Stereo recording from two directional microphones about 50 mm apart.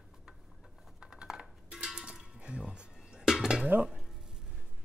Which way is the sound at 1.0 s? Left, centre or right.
Centre.